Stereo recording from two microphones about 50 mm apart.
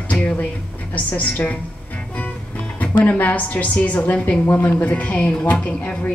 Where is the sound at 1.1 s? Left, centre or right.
Left.